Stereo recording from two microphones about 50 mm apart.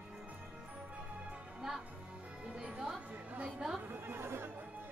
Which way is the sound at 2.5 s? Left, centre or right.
Centre.